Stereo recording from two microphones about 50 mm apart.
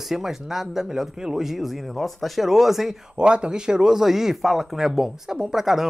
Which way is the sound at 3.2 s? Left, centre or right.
Centre.